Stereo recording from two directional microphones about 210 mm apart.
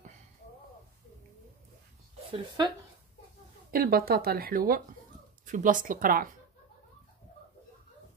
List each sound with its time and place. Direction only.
2.3 s speech: 20° right (ahead or behind)
3.7 s speech: 45° right (ahead or behind)